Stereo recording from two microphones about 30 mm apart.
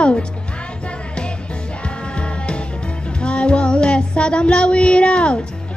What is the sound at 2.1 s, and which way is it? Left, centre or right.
Music, left.